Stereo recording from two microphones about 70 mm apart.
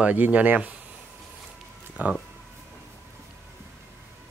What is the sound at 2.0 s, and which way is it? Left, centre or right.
Speech, right.